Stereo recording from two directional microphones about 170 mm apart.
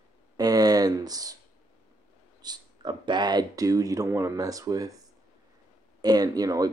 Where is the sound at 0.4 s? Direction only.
20° right (ahead or behind).